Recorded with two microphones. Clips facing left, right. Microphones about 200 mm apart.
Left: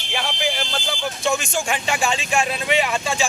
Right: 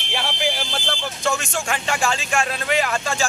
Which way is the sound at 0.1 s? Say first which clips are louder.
Even; centre (ahead or behind).